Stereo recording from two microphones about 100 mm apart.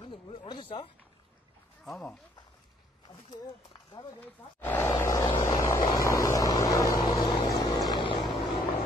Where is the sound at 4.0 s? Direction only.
40° left (ahead or behind).